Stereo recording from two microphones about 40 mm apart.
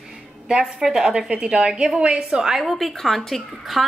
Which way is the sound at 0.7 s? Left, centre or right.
Centre.